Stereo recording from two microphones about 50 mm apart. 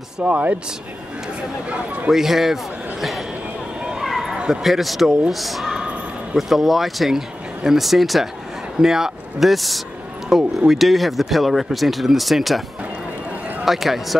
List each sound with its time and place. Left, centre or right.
0.2 s speech: right
1.7 s speech: right
2.0 s a man's voice: centre
4.0 s a sound: centre
4.4 s speech: centre
13.7 s speech: centre